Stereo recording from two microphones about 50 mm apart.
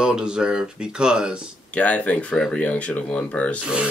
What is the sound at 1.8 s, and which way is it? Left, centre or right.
Speech, left.